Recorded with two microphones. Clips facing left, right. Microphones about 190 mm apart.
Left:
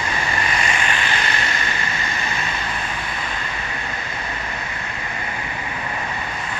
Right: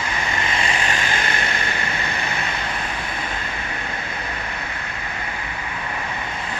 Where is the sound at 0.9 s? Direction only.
50° right (ahead or behind).